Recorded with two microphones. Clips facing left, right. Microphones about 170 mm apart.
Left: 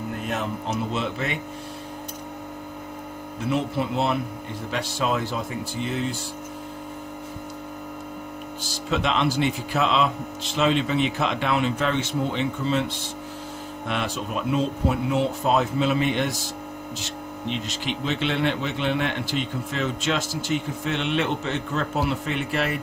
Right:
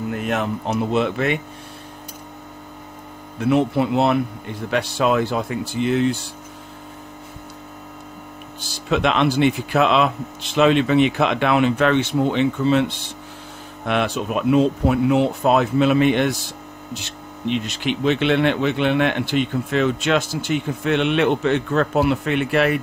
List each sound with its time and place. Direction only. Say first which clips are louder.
0.2 s speech: right 5 dB; 70° right (ahead or behind)
3.4 s speech: right 7 dB; 65° right (ahead or behind)
8.7 s speech: right 5 dB; 65° right (ahead or behind)